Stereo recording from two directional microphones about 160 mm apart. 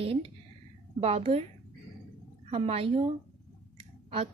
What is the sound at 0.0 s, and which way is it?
Speech, 35° right (ahead or behind).